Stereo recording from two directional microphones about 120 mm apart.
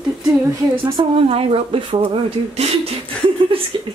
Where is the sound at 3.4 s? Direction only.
45° right (ahead or behind).